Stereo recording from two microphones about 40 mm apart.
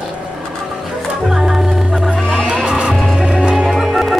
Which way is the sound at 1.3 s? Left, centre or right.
Centre.